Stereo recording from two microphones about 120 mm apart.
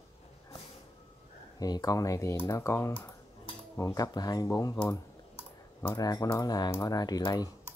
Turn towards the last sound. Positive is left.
turn(degrees=30)  # may be behind; listen again after turning